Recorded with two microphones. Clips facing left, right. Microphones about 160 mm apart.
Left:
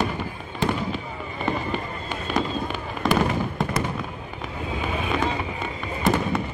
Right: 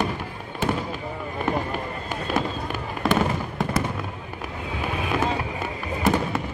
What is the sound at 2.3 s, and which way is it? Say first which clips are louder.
Fireworks: left 1 dB; centre (ahead or behind).